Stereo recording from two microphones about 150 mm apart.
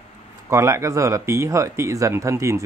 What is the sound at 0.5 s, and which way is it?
Speech, 20° right (ahead or behind).